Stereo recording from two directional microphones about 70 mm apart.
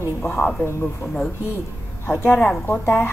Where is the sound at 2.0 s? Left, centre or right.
Left.